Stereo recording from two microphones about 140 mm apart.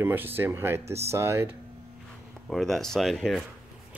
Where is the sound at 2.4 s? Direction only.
Centre (ahead or behind).